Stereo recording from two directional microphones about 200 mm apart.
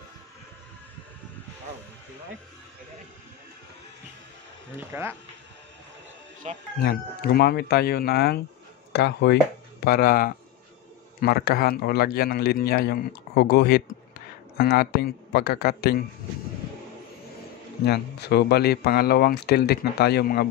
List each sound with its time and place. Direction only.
4.7 s speech: 10° right (ahead or behind)
6.4 s speech: 35° right (ahead or behind)
6.8 s a man's voice: 50° left (ahead or behind)
9.8 s a man's voice: 45° left (ahead or behind)
17.8 s a man's voice: 55° left (ahead or behind)